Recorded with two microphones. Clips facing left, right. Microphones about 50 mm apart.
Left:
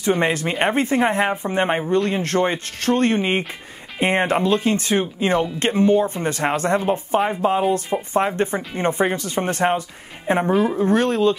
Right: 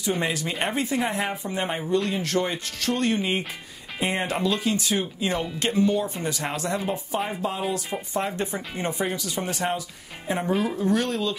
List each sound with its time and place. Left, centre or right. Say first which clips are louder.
0.0 s speech: left 7 dB; left
7.9 s speech: left 8 dB; centre
8.4 s speech: left 7 dB; left
10.6 s speech: left 6 dB; left